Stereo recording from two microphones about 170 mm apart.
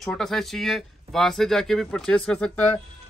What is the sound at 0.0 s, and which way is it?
Speech, centre (ahead or behind).